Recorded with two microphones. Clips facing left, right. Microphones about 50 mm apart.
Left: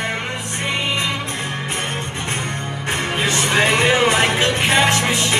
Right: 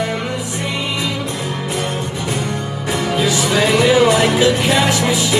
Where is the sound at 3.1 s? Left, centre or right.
Left.